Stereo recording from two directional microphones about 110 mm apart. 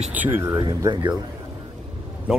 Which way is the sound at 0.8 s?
40° right (ahead or behind).